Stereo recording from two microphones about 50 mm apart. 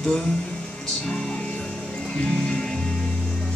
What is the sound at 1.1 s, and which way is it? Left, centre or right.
Music, centre.